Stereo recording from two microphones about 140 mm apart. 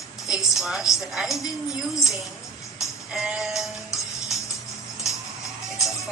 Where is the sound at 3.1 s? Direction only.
5° right (ahead or behind).